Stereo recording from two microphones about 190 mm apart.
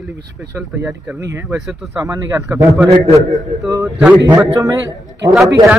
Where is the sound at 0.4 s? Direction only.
5° right (ahead or behind).